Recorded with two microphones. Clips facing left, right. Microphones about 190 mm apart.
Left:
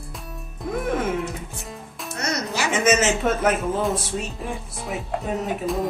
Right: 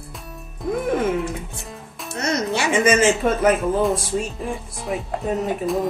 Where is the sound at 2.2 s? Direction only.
25° right (ahead or behind).